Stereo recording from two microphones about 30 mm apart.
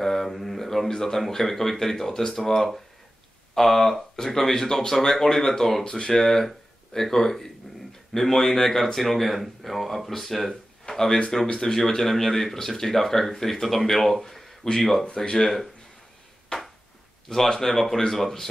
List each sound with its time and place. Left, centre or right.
0.0 s speech: centre
5.9 s speech: left
6.1 s speech: centre
10.5 s a sound: centre
11.5 s speech: centre
14.6 s speech: centre
17.3 s speech: centre